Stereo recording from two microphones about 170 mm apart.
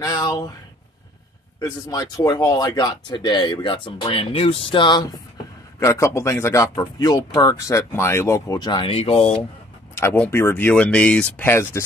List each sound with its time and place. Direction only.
0.0 s speech: 20° left (ahead or behind)
1.6 s speech: 20° left (ahead or behind)
5.8 s speech: 15° left (ahead or behind); by 9.4 s 35° left (ahead or behind)
9.9 s speech: 10° left (ahead or behind)